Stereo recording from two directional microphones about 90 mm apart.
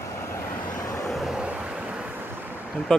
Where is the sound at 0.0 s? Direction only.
30° left (ahead or behind).